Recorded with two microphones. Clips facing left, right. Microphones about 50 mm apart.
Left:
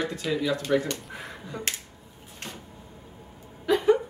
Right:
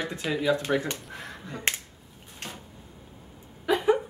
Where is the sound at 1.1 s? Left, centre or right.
Centre.